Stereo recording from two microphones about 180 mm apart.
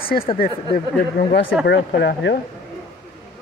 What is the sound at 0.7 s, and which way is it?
Speech, 60° left (ahead or behind).